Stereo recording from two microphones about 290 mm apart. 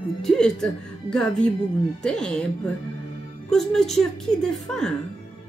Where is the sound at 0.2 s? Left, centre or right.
Centre.